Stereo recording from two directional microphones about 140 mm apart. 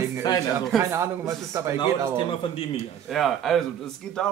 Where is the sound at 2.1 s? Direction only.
40° left (ahead or behind).